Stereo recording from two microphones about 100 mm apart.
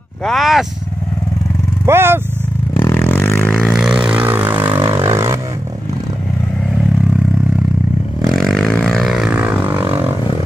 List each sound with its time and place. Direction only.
0.2 s speech: centre (ahead or behind)
1.9 s vehicle: 25° right (ahead or behind)
2.8 s vehicle: 20° left (ahead or behind)
3.5 s vehicle: centre (ahead or behind); by 5.4 s 30° right (ahead or behind)
8.3 s vehicle: centre (ahead or behind)
9.3 s a sound: 15° right (ahead or behind)